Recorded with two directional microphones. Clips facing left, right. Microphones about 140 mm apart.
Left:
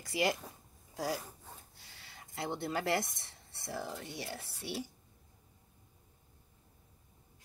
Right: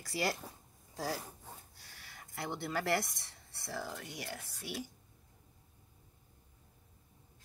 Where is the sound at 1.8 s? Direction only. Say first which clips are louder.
Even; 20° left (ahead or behind).